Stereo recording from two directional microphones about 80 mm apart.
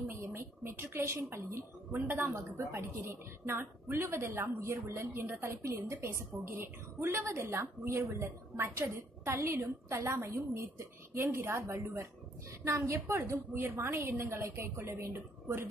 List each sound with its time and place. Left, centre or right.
0.1 s a woman's voice: right
12.9 s a woman's voice: right